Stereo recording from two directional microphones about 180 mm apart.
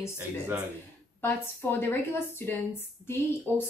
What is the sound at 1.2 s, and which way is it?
A woman's voice, 10° left (ahead or behind).